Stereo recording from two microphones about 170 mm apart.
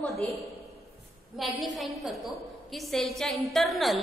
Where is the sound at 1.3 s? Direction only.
Centre (ahead or behind).